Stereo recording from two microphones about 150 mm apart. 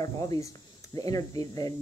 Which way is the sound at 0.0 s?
25° left (ahead or behind).